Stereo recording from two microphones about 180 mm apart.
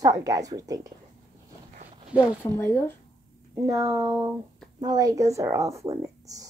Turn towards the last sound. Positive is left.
turn(degrees=-20)  # may be behind; listen again after turning